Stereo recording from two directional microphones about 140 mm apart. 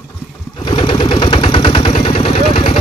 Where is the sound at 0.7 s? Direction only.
35° left (ahead or behind).